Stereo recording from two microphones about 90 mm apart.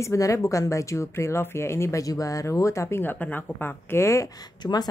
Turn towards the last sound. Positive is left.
turn(degrees=30)  # may be behind; listen again after turning